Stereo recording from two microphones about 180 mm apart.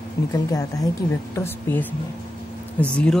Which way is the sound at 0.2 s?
15° left (ahead or behind).